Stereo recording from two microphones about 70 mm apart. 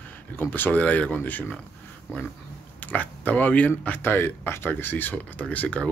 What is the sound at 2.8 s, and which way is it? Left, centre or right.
Speech, left.